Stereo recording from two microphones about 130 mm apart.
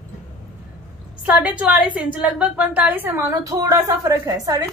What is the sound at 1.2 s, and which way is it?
A woman's voice, 10° right (ahead or behind).